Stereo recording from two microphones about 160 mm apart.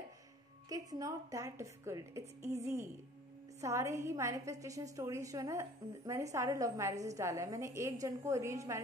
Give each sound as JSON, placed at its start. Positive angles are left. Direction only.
{"t": 0.7, "sound": "a woman's voice", "side_deg": -20}